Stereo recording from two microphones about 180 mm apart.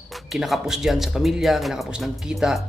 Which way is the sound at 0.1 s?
Centre (ahead or behind).